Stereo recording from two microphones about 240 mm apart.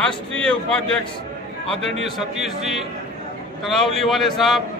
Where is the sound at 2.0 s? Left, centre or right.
Centre.